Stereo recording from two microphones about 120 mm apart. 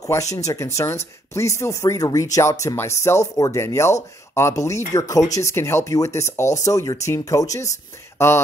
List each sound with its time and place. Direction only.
0.0 s speech: 30° left (ahead or behind)